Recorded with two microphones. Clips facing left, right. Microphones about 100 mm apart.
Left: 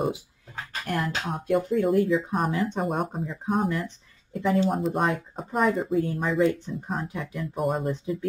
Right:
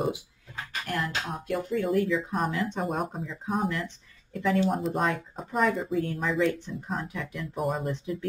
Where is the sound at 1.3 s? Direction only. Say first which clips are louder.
Left 9 dB; 40° left (ahead or behind).